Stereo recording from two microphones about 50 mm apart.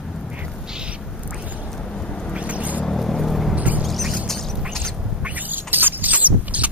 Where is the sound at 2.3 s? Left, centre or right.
Right.